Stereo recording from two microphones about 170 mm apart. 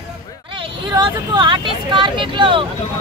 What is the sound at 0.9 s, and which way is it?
Speech, 25° right (ahead or behind).